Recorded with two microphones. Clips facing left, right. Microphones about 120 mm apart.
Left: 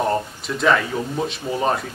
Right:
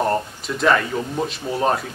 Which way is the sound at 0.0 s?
Centre (ahead or behind).